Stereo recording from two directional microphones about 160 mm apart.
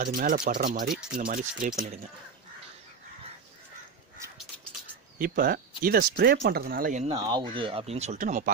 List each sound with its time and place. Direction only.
0.0 s speech: 60° right (ahead or behind)
5.2 s speech: 65° right (ahead or behind)
7.0 s speech: 35° right (ahead or behind); by 8.5 s 50° right (ahead or behind)